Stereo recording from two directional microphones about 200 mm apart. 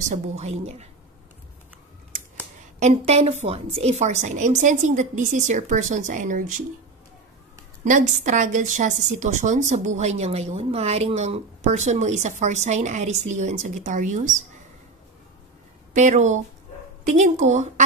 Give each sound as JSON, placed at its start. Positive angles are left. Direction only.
{"t": 0.0, "sound": "a woman's voice", "side_deg": -35}
{"t": 2.8, "sound": "a woman's voice", "side_deg": -35}
{"t": 7.8, "sound": "a woman's voice", "side_deg": -40}
{"t": 15.9, "sound": "a woman's voice", "side_deg": -35}